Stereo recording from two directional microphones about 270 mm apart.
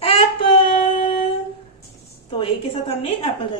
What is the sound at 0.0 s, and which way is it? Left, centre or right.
Child singing, left.